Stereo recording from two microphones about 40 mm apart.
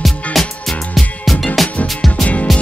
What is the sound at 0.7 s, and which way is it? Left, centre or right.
Music, centre.